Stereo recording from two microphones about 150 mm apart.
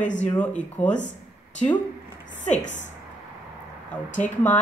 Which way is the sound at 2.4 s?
55° left (ahead or behind).